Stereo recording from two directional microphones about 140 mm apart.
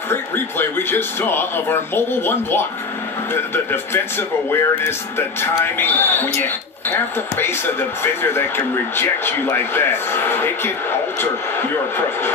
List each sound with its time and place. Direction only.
0.1 s speech: 15° left (ahead or behind)
5.8 s speech: 15° left (ahead or behind)